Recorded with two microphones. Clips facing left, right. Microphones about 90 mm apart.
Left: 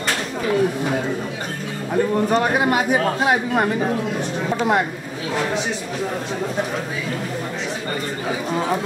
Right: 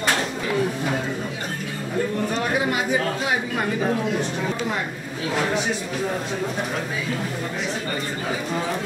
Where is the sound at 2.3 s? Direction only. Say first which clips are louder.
Left 5 dB; 55° left (ahead or behind).